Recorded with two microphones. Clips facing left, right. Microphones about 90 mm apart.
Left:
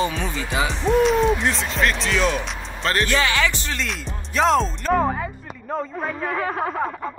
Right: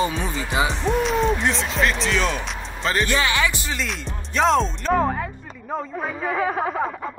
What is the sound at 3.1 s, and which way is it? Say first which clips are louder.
Speech: left 1 dB; 20° right (ahead or behind).